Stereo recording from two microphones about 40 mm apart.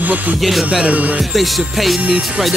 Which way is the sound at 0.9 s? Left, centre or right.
Right.